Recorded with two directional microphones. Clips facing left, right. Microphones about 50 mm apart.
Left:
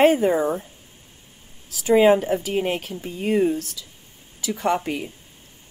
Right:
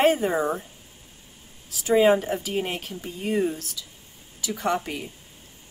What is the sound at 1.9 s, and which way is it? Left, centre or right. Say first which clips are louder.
Speech: left 3 dB; left.